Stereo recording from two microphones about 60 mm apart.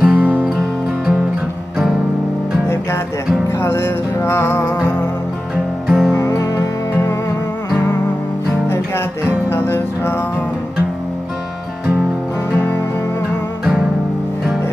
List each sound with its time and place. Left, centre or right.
0.0 s music: right
0.5 s music: centre
3.4 s music: left
5.9 s music: centre
6.2 s music: left
9.5 s music: left